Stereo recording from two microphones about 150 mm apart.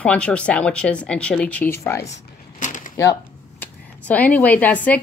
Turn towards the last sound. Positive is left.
turn(degrees=10)  # may be behind; listen again after turning